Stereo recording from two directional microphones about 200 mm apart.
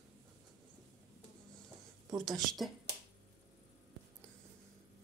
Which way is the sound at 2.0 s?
20° right (ahead or behind).